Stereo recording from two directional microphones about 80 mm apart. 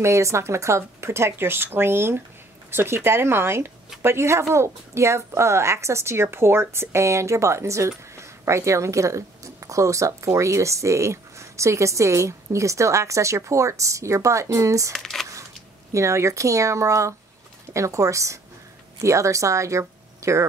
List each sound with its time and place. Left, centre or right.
0.0 s speech: right
14.9 s speech: centre
15.9 s speech: right